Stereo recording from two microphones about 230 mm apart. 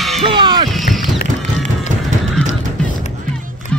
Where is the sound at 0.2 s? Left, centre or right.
Centre.